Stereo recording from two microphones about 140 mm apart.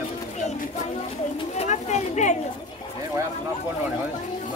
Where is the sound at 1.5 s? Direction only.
55° left (ahead or behind).